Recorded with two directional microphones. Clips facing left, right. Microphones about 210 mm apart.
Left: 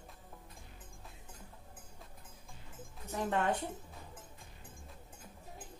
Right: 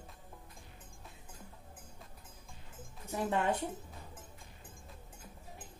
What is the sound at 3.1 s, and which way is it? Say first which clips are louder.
Speech: right 1 dB; 10° right (ahead or behind).